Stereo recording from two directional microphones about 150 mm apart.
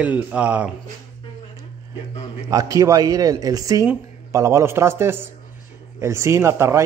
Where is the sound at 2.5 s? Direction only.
20° right (ahead or behind).